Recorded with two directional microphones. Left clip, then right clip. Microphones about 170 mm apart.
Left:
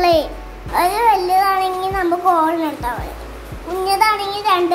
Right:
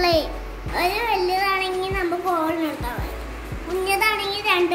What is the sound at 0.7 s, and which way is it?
Child singing, 45° left (ahead or behind).